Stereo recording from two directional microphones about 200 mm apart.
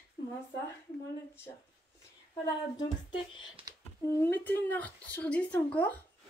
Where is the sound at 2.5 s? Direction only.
20° left (ahead or behind).